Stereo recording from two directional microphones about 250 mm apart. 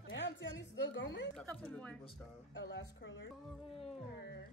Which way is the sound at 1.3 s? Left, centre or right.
Centre.